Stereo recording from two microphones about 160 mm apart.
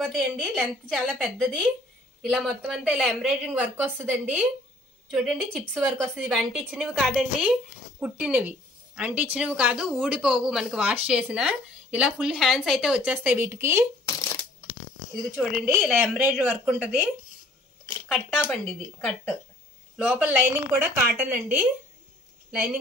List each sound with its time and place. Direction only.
0.0 s a woman's voice: centre (ahead or behind); by 13.8 s 15° right (ahead or behind)
14.0 s shuffling cards: 20° left (ahead or behind)
15.3 s a woman's voice: 5° right (ahead or behind)
20.0 s a woman's voice: 5° right (ahead or behind)
22.5 s a woman's voice: 5° right (ahead or behind)